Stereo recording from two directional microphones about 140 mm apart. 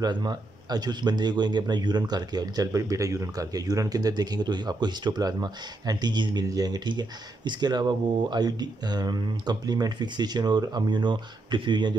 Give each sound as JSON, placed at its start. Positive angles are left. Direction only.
{"t": 0.0, "sound": "speech", "side_deg": -30}